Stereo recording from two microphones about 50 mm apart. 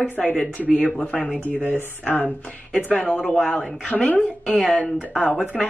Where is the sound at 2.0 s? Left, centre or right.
Left.